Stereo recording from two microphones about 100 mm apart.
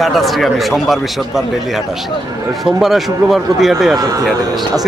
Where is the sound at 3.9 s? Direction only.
40° right (ahead or behind).